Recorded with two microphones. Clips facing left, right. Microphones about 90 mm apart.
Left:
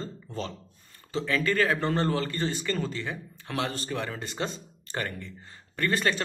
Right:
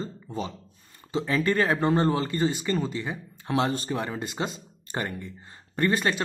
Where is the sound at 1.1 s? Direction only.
25° right (ahead or behind).